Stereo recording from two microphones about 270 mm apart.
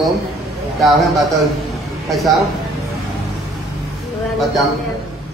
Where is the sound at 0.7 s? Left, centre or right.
Centre.